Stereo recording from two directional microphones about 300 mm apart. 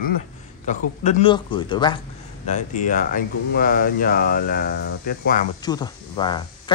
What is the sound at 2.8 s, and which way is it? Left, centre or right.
Speech, left.